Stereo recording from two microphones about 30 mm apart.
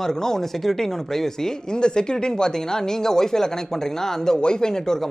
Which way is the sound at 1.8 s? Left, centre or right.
Left.